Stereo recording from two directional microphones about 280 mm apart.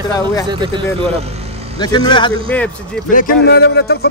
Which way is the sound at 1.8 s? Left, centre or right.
Centre.